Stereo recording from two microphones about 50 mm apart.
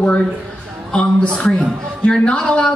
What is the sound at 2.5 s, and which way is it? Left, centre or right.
Speech, left.